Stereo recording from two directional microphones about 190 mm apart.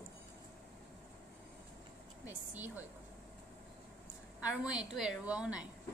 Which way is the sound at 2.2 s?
10° right (ahead or behind).